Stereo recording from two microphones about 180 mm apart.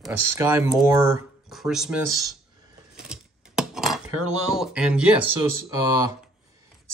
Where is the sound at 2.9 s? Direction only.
5° right (ahead or behind).